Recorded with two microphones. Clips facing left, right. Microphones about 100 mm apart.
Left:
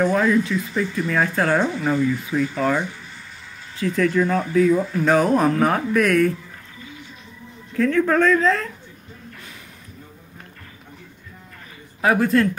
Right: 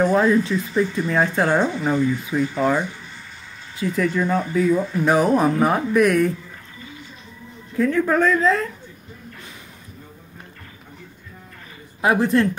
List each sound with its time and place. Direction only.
0.0 s speech: 25° right (ahead or behind)
3.8 s speech: 10° right (ahead or behind)
7.7 s a woman's voice: 10° right (ahead or behind)
12.0 s speech: 20° right (ahead or behind)